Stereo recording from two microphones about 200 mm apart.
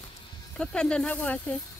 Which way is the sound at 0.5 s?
5° left (ahead or behind).